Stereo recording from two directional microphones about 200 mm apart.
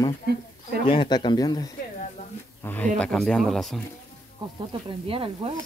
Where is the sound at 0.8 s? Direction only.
25° left (ahead or behind); by 3.8 s centre (ahead or behind).